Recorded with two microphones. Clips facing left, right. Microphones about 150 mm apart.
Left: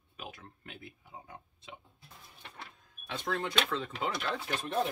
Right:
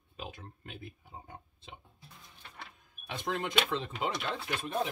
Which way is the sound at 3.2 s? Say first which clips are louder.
Right 1 dB; 15° right (ahead or behind).